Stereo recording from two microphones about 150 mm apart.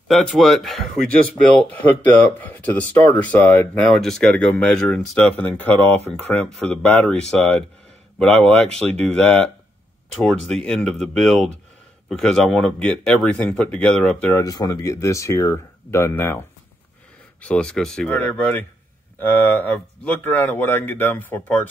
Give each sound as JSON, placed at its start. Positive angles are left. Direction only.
{"t": 0.1, "sound": "speech", "side_deg": 0}
{"t": 3.9, "sound": "speech", "side_deg": 0}
{"t": 10.5, "sound": "speech", "side_deg": 5}
{"t": 14.3, "sound": "speech", "side_deg": 25}
{"t": 17.4, "sound": "speech", "side_deg": 10}